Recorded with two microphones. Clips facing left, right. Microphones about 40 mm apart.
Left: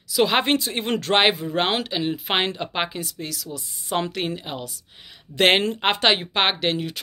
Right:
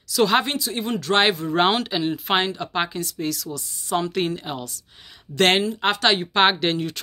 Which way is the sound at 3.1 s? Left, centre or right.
Centre.